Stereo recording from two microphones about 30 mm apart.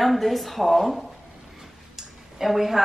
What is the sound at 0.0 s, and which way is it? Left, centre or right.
A woman's voice, centre.